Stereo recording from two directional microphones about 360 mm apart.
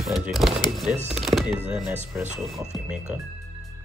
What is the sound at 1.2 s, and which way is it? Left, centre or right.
Chopping, centre.